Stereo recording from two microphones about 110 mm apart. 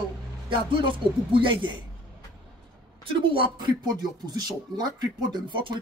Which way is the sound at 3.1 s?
50° right (ahead or behind).